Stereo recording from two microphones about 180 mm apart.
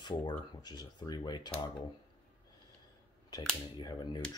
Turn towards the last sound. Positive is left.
turn(degrees=20)  # may be behind; listen again after turning